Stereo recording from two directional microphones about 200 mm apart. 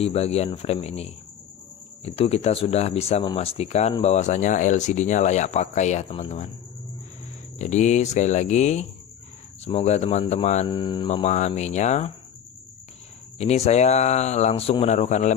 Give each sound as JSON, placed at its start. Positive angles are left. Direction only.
{"t": 0.0, "sound": "speech", "side_deg": 30}
{"t": 7.5, "sound": "speech", "side_deg": 35}
{"t": 10.7, "sound": "speech", "side_deg": 25}
{"t": 13.4, "sound": "speech", "side_deg": 35}